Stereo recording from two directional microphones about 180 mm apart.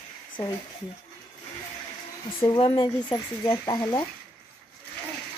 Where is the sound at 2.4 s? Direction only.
25° left (ahead or behind).